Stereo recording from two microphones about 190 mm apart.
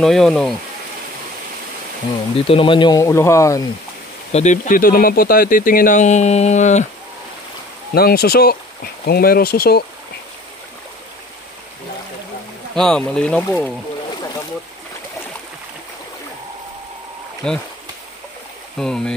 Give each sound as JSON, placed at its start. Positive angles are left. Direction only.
{"t": 0.0, "sound": "speech", "side_deg": 0}
{"t": 2.3, "sound": "speech", "side_deg": 30}
{"t": 4.3, "sound": "speech", "side_deg": 35}
{"t": 7.9, "sound": "speech", "side_deg": 55}
{"t": 12.7, "sound": "speech", "side_deg": 5}
{"t": 17.4, "sound": "speech", "side_deg": 5}
{"t": 18.8, "sound": "speech", "side_deg": 0}